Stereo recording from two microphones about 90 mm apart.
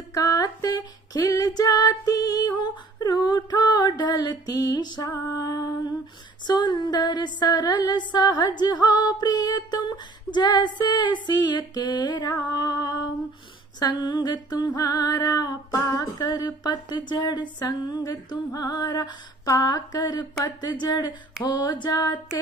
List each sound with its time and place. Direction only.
0.1 s female singing: 40° left (ahead or behind)
5.3 s music: 45° left (ahead or behind)
6.4 s a sound: 55° left (ahead or behind)
8.1 s speech: 50° left (ahead or behind)
8.8 s female singing: 50° left (ahead or behind)
10.8 s speech: 50° left (ahead or behind)
14.8 s female singing: 45° left (ahead or behind)
16.2 s speech: 45° left (ahead or behind)